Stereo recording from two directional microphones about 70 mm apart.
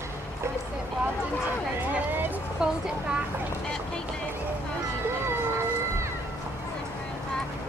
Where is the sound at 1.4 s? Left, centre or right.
Right.